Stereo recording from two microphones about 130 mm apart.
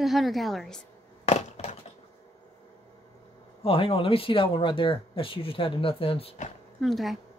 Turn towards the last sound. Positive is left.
turn(degrees=0)  # may be behind; listen again after turning